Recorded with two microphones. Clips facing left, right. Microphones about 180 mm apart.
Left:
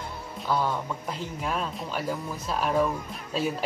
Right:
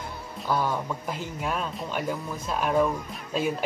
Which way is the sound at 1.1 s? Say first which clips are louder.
Even; centre (ahead or behind).